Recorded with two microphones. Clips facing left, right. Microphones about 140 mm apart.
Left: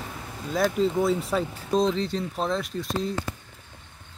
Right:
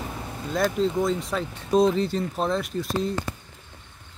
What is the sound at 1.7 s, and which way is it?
Speech, 5° right (ahead or behind).